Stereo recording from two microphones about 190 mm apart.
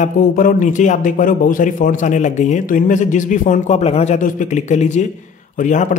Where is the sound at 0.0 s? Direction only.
45° left (ahead or behind).